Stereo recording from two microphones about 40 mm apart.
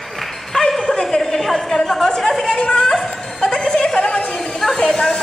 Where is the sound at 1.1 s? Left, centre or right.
Centre.